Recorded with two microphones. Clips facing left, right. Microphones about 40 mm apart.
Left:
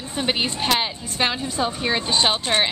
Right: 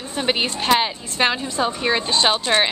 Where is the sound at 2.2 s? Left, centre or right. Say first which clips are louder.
Right 2 dB; centre.